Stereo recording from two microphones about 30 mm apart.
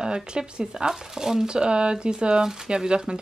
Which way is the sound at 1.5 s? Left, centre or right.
Right.